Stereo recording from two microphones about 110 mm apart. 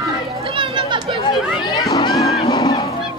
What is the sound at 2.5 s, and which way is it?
Honk, 35° left (ahead or behind).